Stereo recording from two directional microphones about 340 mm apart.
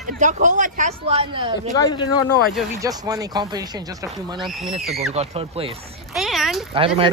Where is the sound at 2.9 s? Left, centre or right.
Centre.